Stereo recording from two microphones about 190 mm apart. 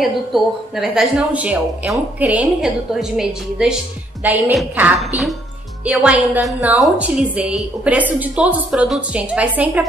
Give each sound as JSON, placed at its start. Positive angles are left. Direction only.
{"t": 0.0, "sound": "a woman's voice", "side_deg": 0}